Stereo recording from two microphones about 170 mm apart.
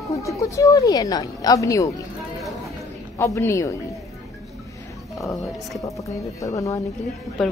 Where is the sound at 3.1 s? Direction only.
15° left (ahead or behind).